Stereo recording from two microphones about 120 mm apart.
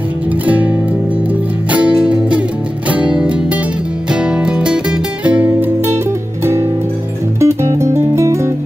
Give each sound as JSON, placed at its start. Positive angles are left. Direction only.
{"t": 1.7, "sound": "music", "side_deg": -10}
{"t": 7.3, "sound": "music", "side_deg": -25}